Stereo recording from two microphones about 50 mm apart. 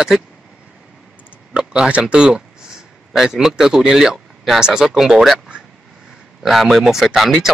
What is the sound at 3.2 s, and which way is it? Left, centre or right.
Speech, centre.